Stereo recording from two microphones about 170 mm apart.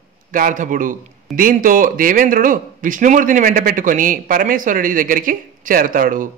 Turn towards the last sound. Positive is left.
turn(degrees=-55)  # may be behind; listen again after turning